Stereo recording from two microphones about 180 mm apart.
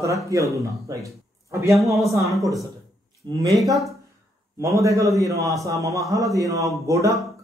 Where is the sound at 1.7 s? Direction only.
Centre (ahead or behind).